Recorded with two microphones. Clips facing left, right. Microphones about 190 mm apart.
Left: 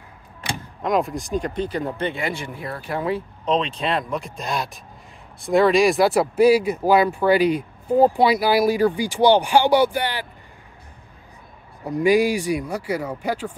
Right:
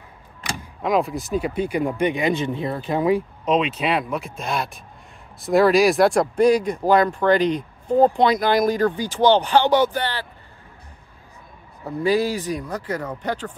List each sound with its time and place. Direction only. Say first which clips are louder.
0.8 s speech: right 1 dB; centre (ahead or behind)
11.8 s speech: left 3 dB; 15° left (ahead or behind)